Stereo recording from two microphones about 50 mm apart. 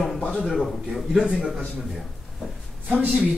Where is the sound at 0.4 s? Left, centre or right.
Centre.